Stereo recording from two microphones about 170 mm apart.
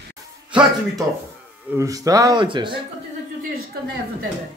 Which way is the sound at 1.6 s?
15° right (ahead or behind).